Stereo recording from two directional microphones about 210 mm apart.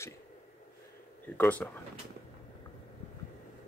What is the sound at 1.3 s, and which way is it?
Speech, 5° left (ahead or behind).